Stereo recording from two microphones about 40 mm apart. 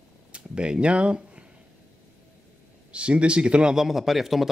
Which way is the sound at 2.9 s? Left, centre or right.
Right.